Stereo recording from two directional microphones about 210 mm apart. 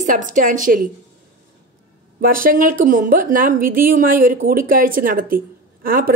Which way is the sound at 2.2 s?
40° right (ahead or behind).